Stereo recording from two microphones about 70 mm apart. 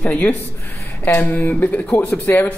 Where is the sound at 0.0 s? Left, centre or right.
Left.